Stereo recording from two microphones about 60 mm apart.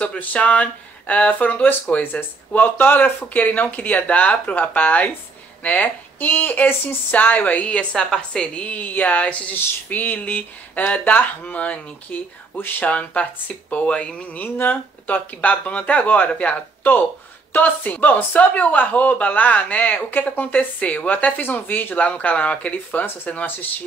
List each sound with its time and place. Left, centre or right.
0.0 s speech: left
12.5 s speech: left
12.9 s speech: left